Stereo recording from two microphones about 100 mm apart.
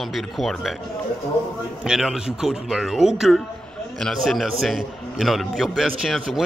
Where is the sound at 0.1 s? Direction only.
Centre (ahead or behind).